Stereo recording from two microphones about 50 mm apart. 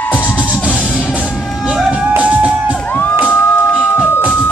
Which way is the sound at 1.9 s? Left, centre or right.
Right.